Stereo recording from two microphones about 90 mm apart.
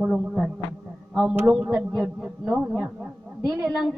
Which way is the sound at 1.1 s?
10° right (ahead or behind).